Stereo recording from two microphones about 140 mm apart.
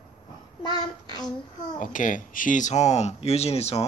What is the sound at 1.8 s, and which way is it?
Speech, 70° left (ahead or behind).